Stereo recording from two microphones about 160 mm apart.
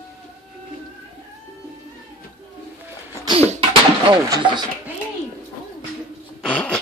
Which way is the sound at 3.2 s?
35° right (ahead or behind).